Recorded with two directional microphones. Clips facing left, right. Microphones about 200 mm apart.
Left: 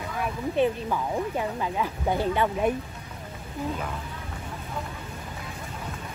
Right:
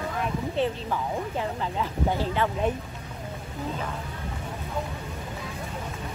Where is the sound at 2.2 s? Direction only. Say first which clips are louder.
Left 2 dB; 15° left (ahead or behind).